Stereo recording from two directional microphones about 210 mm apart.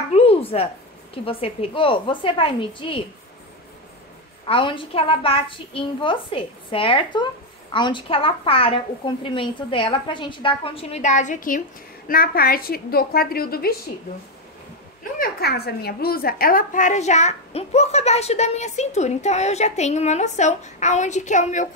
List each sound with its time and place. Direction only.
0.1 s a sound: 30° left (ahead or behind)
1.1 s a woman's voice: 25° left (ahead or behind)
4.5 s a woman's voice: 25° left (ahead or behind); by 13.7 s 45° left (ahead or behind)
15.1 s a woman's voice: 45° left (ahead or behind)